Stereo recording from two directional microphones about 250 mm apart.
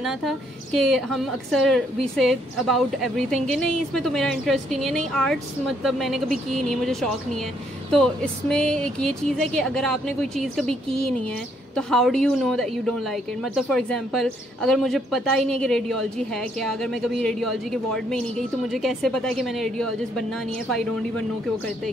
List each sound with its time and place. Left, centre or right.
0.0 s a woman's voice: centre